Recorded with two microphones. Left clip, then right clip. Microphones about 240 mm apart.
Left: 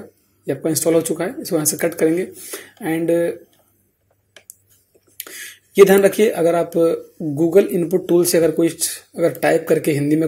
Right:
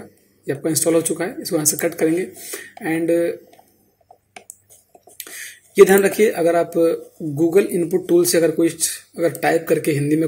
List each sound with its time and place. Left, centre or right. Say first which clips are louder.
0.5 s speech: left 1 dB; centre
5.1 s speech: left 1 dB; left